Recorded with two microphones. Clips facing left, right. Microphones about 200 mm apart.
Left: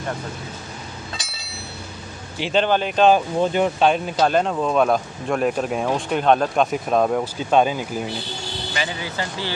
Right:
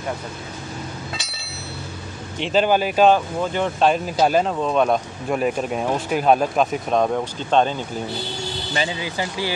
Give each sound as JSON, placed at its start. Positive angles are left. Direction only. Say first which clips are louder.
{"t": 2.3, "sound": "speech", "louder": "right 1 dB", "side_deg": 0}
{"t": 3.3, "sound": "speech", "louder": "left 3 dB", "side_deg": 15}
{"t": 3.8, "sound": "speech", "louder": "right 3 dB", "side_deg": 0}
{"t": 9.0, "sound": "speech", "louder": "right 2 dB", "side_deg": -15}